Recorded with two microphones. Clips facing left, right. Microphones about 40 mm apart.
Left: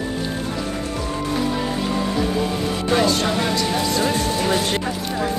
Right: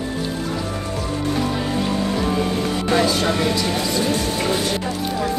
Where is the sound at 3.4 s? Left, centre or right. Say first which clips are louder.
Right 1 dB; centre.